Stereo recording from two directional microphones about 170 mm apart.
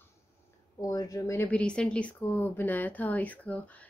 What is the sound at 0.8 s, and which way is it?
Speech, 20° left (ahead or behind).